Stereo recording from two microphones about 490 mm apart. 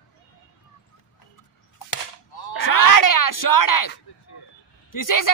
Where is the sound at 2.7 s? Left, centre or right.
Left.